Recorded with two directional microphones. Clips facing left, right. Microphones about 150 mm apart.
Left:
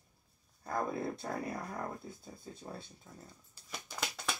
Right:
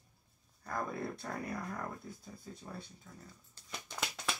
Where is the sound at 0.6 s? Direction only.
25° left (ahead or behind).